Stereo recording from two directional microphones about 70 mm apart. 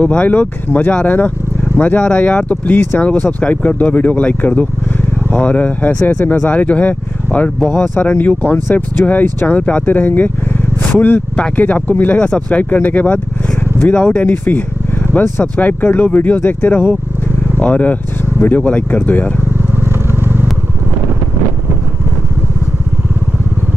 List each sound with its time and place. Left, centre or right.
0.0 s speech: centre
19.7 s vehicle: right